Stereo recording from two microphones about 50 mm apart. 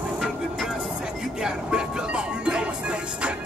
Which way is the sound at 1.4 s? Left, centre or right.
Centre.